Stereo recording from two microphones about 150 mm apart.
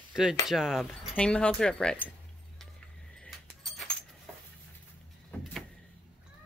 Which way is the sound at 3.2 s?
Centre (ahead or behind).